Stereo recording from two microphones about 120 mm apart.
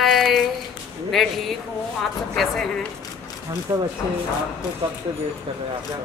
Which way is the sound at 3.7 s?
20° right (ahead or behind).